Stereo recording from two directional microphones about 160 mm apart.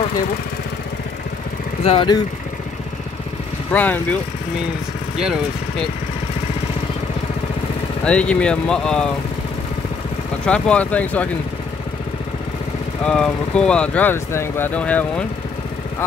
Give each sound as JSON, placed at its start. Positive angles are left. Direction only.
{"t": 1.9, "sound": "speech", "side_deg": 30}
{"t": 3.7, "sound": "speech", "side_deg": 10}
{"t": 8.0, "sound": "speech", "side_deg": 5}
{"t": 10.4, "sound": "speech", "side_deg": 5}
{"t": 13.0, "sound": "speech", "side_deg": 5}